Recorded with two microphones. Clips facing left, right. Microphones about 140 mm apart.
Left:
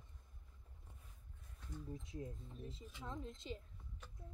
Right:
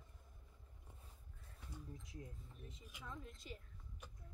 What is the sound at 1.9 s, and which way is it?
Speech, 25° left (ahead or behind).